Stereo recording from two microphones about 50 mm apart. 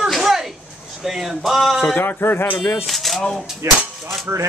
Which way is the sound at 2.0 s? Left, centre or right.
Left.